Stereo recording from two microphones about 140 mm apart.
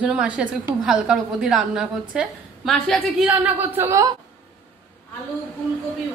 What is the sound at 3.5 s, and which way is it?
Speech, 15° right (ahead or behind).